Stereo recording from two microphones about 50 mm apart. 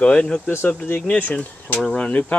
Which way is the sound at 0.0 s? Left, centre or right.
Left.